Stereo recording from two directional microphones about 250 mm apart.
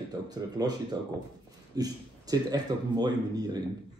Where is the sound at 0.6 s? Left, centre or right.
Centre.